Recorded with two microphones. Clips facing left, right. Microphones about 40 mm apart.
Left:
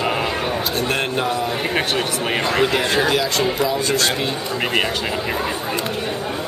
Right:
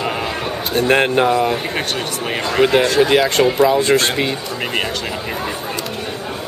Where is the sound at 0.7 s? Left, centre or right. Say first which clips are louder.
Right 11 dB; right.